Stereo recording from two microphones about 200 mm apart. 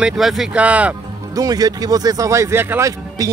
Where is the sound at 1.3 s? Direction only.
20° right (ahead or behind).